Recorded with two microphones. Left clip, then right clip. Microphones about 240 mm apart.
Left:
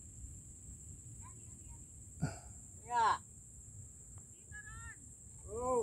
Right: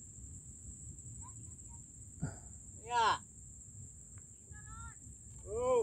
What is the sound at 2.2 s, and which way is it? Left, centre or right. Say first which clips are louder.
Hiccup: left 3 dB; centre.